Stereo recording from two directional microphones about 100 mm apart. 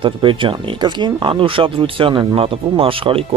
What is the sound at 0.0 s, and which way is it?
Speech, 60° right (ahead or behind).